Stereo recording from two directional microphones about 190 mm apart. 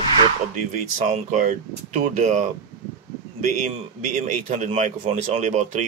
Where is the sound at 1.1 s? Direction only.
40° right (ahead or behind).